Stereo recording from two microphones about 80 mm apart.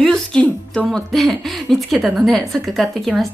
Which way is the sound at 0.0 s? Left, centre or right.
Centre.